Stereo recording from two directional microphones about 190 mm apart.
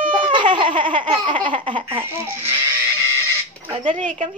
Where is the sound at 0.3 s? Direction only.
25° right (ahead or behind).